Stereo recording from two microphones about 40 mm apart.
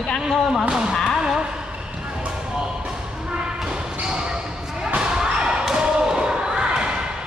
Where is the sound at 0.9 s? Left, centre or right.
Centre.